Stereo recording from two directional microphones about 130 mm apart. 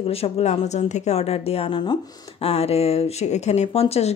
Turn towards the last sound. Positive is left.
turn(degrees=50)  # may be behind; listen again after turning